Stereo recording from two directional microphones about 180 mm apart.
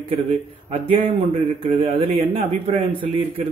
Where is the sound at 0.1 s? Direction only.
30° right (ahead or behind).